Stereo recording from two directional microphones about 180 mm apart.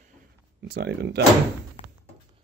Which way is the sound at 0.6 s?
70° right (ahead or behind).